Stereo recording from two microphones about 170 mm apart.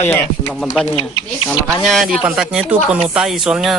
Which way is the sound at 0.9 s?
30° left (ahead or behind).